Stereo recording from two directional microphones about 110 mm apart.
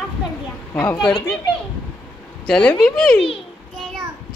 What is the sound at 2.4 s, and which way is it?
Speech, 10° left (ahead or behind).